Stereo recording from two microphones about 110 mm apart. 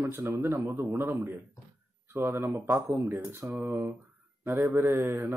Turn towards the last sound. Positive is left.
turn(degrees=-20)  # may be behind; listen again after turning